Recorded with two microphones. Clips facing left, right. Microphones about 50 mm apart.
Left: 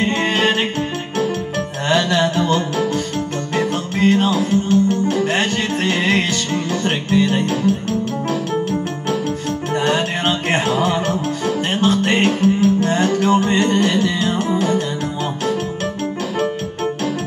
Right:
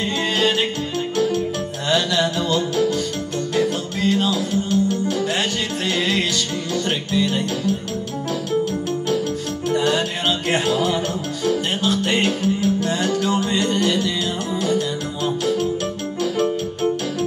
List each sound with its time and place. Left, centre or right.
0.0 s music: left
9.7 s music: left